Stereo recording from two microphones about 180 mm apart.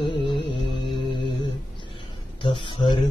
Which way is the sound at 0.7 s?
25° left (ahead or behind).